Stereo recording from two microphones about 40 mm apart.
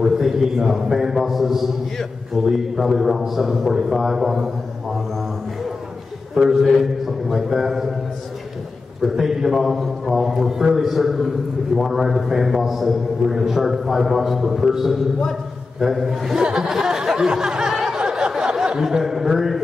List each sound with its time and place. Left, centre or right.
0.0 s a man's voice: centre
6.3 s a man's voice: centre
9.0 s a man's voice: centre
16.3 s a sound: centre